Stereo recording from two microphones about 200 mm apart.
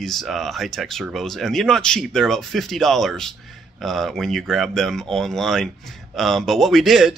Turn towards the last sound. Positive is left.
turn(degrees=0)  # may be behind; listen again after turning